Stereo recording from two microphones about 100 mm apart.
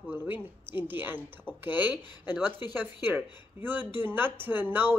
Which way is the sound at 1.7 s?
45° left (ahead or behind).